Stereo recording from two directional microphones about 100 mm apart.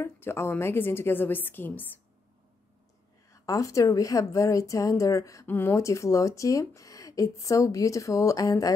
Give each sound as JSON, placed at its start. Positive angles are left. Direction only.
{"t": 0.0, "sound": "a woman's voice", "side_deg": 25}
{"t": 3.3, "sound": "speech", "side_deg": 35}
{"t": 5.5, "sound": "speech", "side_deg": 20}